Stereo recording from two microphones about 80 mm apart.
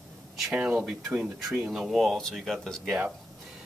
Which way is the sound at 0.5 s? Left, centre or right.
Centre.